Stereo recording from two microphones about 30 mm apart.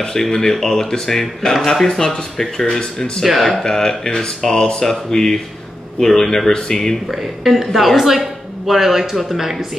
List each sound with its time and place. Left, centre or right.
0.0 s speech: centre
1.1 s speech: centre
3.4 s speech: centre
7.1 s a woman's voice: centre